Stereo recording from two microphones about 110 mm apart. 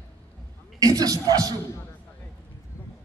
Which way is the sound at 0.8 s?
35° right (ahead or behind).